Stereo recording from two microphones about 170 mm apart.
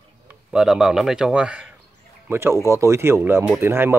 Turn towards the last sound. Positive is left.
turn(degrees=-15)  # may be behind; listen again after turning